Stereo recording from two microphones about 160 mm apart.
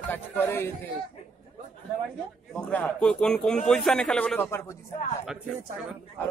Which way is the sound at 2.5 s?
10° left (ahead or behind).